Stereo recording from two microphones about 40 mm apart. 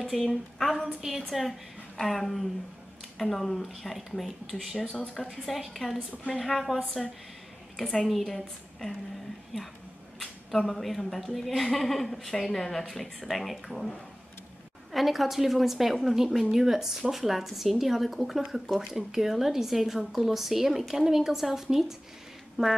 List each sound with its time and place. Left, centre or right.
0.0 s a woman's voice: centre
1.3 s a woman's voice: centre
4.8 s speech: centre
5.2 s a woman's voice: centre
7.9 s speech: centre
9.5 s a woman's voice: centre